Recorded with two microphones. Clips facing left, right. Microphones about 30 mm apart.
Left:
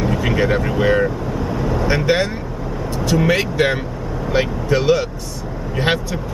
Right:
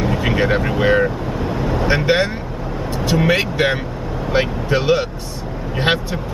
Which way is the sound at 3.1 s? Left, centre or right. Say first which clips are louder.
Even; centre.